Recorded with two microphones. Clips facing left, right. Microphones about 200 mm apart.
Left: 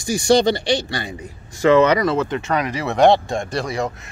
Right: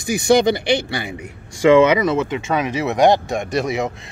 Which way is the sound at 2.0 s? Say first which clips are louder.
Right 1 dB; 20° right (ahead or behind).